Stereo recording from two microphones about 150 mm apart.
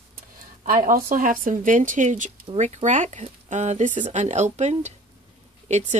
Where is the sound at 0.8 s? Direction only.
65° right (ahead or behind).